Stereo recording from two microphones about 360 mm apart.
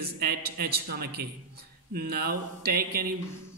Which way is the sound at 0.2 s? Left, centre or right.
Right.